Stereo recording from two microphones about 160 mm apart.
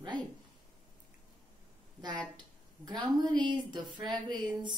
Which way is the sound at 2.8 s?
25° right (ahead or behind).